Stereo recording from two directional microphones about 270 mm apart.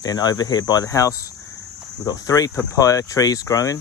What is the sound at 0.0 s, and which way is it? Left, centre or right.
Cricket, centre.